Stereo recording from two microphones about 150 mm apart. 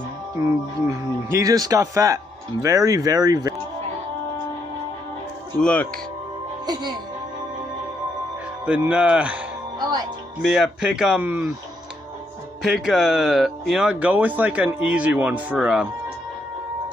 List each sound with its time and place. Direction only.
0.4 s speech: 20° right (ahead or behind)
5.6 s speech: 5° left (ahead or behind)
6.6 s speech: 30° right (ahead or behind)
8.6 s speech: 10° right (ahead or behind)
10.4 s a man's voice: centre (ahead or behind)
12.6 s speech: centre (ahead or behind)